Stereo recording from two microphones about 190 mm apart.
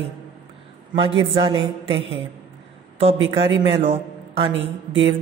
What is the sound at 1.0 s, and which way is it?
A man's voice, 30° right (ahead or behind).